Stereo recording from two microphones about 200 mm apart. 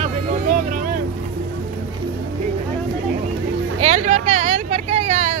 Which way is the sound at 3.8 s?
35° right (ahead or behind).